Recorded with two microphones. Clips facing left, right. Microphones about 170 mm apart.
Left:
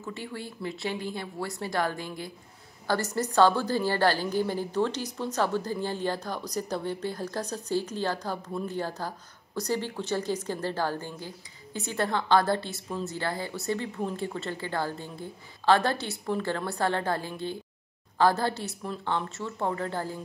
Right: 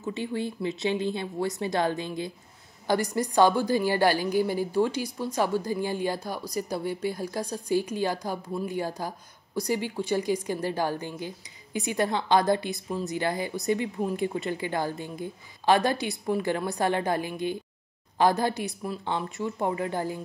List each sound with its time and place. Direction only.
0.0 s a woman's voice: 20° right (ahead or behind)